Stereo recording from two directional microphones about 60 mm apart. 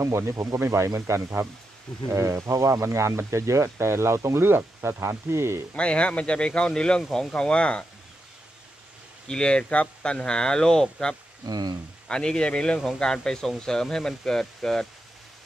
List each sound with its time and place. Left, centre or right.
0.6 s speech: right
5.8 s speech: centre
9.3 s speech: centre
11.4 s speech: right
12.1 s speech: centre